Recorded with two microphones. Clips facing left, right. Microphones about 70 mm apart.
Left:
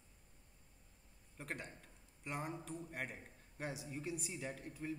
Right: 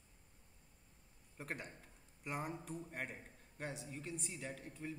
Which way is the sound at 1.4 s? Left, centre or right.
Centre.